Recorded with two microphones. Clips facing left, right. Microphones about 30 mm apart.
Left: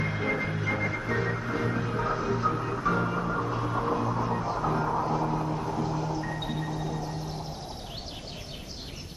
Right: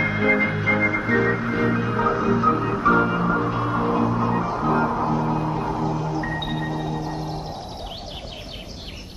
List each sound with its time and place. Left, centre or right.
0.0 s music: right
2.0 s music: centre
2.5 s music: right
5.9 s music: centre
6.2 s music: right